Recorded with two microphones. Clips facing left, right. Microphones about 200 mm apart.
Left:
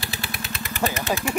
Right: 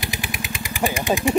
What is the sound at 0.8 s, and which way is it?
Speech, 15° right (ahead or behind).